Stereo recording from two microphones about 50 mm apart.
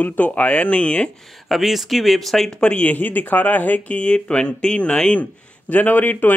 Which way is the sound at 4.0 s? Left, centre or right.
Left.